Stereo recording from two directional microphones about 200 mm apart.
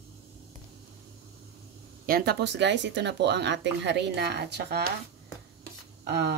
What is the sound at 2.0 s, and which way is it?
Speech, 50° right (ahead or behind).